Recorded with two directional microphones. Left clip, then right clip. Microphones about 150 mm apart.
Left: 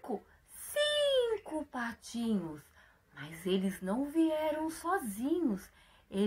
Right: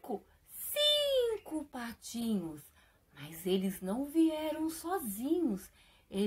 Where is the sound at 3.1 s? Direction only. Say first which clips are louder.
Even; 30° right (ahead or behind).